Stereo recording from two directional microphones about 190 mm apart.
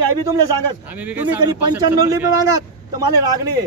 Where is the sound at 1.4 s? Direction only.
20° right (ahead or behind).